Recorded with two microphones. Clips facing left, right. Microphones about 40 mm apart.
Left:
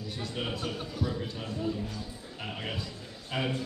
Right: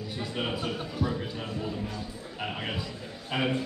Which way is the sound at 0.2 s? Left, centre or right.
Centre.